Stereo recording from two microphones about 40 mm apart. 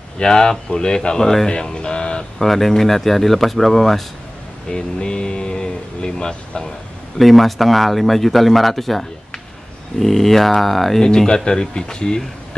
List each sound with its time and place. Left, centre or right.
0.2 s speech: centre
1.5 s music: left
2.3 s speech: centre
4.6 s speech: left
7.2 s speech: centre
11.0 s speech: centre